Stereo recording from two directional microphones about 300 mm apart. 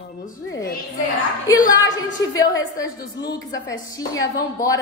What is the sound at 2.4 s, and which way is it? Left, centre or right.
A woman's voice, centre.